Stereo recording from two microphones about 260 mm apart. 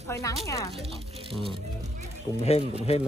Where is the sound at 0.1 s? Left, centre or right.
Centre.